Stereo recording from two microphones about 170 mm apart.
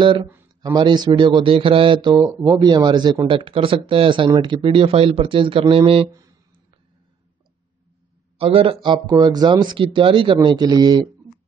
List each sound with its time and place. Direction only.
0.0 s speech: 30° right (ahead or behind)
8.4 s speech: 35° right (ahead or behind)